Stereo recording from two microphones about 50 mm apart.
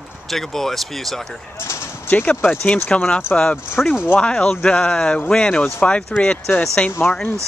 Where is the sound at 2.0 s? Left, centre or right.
Left.